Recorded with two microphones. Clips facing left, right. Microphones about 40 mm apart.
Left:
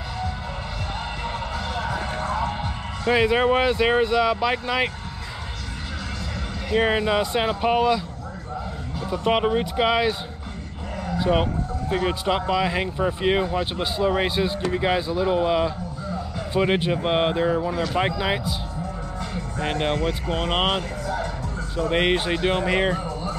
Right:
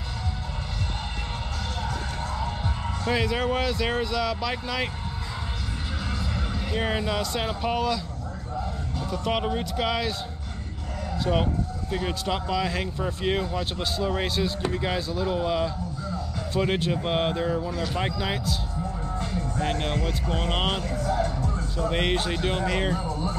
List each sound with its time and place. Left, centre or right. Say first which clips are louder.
2.0 s a sound: left 6 dB; left
2.6 s speech: left 3 dB; left
6.7 s speech: left 7 dB; centre
9.0 s speech: left 6 dB; left
11.1 s a man's voice: left 4 dB; centre
19.6 s speech: left 5 dB; left